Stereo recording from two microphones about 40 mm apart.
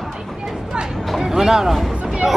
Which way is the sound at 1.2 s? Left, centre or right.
Centre.